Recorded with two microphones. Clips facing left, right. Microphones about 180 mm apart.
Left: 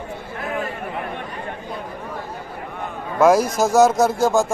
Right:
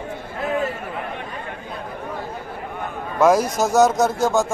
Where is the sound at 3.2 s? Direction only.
5° left (ahead or behind).